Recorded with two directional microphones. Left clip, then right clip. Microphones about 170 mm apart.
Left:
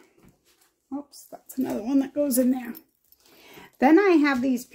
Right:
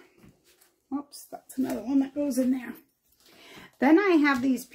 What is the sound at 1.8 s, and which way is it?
Speech, 65° left (ahead or behind).